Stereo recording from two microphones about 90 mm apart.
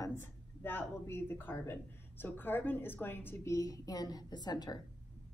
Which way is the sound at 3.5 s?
40° left (ahead or behind).